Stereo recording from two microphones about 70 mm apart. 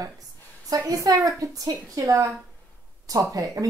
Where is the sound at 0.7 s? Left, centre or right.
Right.